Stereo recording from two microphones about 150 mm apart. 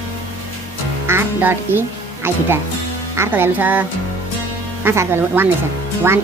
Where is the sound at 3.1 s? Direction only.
15° right (ahead or behind).